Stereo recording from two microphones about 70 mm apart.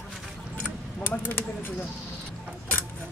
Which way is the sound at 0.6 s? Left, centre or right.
Left.